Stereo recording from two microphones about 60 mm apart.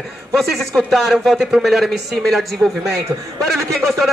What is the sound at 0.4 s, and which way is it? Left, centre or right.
Speech, centre.